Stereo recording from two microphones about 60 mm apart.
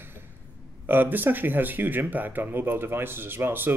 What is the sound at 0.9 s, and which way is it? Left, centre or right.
Speech, right.